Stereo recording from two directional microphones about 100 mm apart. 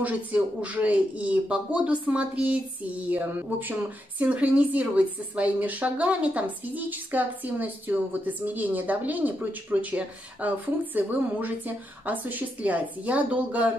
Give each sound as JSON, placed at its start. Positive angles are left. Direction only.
{"t": 0.0, "sound": "speech", "side_deg": -15}